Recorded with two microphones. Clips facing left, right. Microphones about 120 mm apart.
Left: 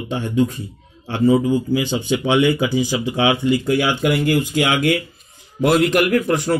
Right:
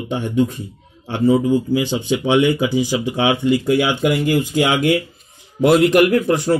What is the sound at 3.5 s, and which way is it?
Speech, centre (ahead or behind).